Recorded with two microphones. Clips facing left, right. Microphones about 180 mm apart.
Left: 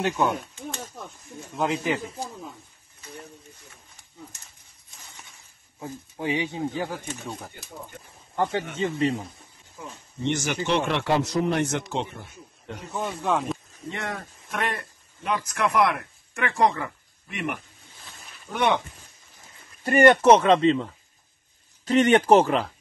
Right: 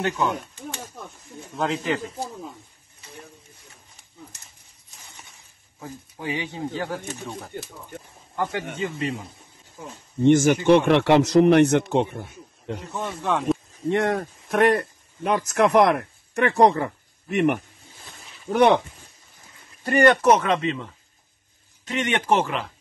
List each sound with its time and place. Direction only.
0.0 s speech: 15° left (ahead or behind)
1.5 s speech: centre (ahead or behind)
5.8 s speech: 25° left (ahead or behind)
7.5 s a man's voice: 55° right (ahead or behind)
8.4 s speech: 25° left (ahead or behind)
10.2 s a man's voice: 50° right (ahead or behind)
12.9 s speech: centre (ahead or behind)
13.8 s speech: 55° right (ahead or behind)
18.5 s speech: 30° right (ahead or behind)
19.8 s speech: 20° left (ahead or behind)